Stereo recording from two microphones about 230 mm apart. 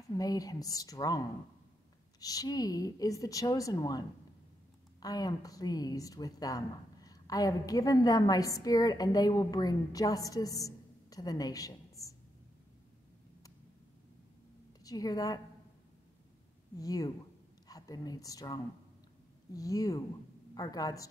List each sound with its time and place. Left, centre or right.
0.1 s speech: centre
5.0 s speech: centre
14.8 s a woman's voice: centre
16.7 s speech: centre